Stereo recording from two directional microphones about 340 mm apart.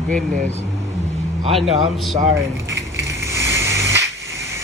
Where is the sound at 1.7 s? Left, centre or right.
Centre.